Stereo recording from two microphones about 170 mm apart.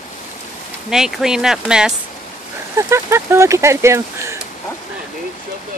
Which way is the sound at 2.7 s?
15° right (ahead or behind).